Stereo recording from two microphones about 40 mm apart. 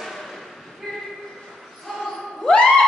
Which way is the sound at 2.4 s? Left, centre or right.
Left.